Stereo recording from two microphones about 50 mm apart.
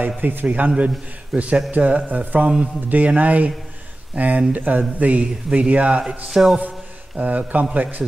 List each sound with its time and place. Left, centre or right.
0.2 s a man's voice: right
0.7 s speech: right; by 6.6 s centre
7.2 s a man's voice: right